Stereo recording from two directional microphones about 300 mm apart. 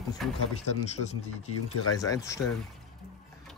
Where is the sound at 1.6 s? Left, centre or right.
Left.